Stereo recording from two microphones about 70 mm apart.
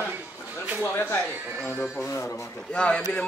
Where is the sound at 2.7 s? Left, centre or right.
Centre.